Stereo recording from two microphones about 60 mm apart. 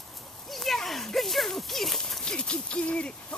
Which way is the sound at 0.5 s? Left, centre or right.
Centre.